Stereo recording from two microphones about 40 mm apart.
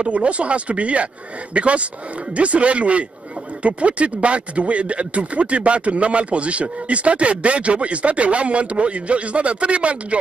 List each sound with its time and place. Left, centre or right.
0.1 s speech: right